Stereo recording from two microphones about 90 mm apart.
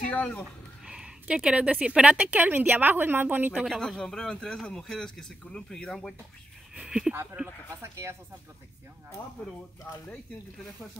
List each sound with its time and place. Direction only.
0.8 s a woman's voice: 10° right (ahead or behind)
3.6 s a man's voice: 5° left (ahead or behind)
6.7 s a woman's voice: 10° right (ahead or behind)
7.8 s speech: 30° right (ahead or behind)
9.4 s a man's voice: 15° left (ahead or behind)